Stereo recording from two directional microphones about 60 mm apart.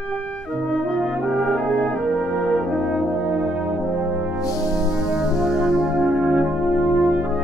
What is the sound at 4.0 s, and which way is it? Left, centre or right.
Brass instrument, right.